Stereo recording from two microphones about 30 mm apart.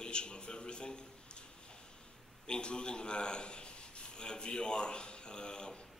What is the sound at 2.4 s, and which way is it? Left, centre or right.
A man's voice, left.